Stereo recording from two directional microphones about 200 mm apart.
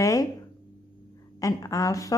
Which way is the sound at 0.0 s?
15° left (ahead or behind).